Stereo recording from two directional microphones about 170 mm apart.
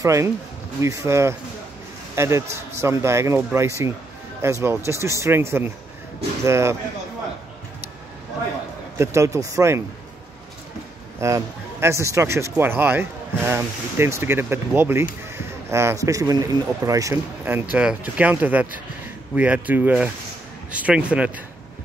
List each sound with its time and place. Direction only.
0.0 s a man's voice: 15° right (ahead or behind)
8.9 s speech: 15° right (ahead or behind)
11.1 s speech: 15° right (ahead or behind)